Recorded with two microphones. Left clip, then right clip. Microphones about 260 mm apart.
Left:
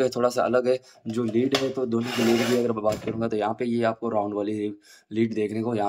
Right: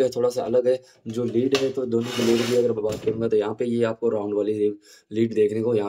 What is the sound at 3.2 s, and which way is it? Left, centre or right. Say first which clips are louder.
Speech: right 3 dB; centre.